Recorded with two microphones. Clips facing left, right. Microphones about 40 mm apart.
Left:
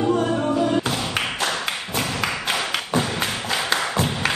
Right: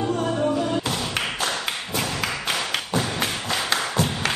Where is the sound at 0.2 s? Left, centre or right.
Centre.